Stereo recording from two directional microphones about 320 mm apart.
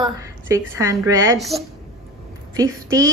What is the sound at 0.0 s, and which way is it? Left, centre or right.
A woman's voice, centre.